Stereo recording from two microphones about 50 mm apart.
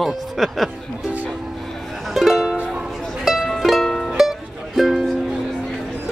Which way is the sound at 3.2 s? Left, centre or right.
Centre.